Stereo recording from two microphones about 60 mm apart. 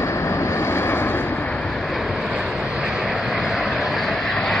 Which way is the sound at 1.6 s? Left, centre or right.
Centre.